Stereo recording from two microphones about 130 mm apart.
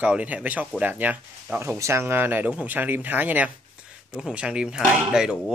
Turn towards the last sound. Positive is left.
turn(degrees=-5)  # may be behind; listen again after turning